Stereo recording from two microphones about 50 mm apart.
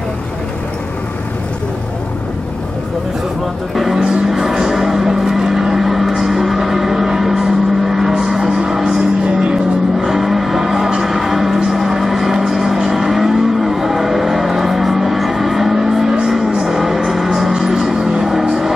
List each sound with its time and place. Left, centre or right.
3.7 s music: centre
9.2 s music: centre
9.9 s vehicle: centre
16.3 s music: centre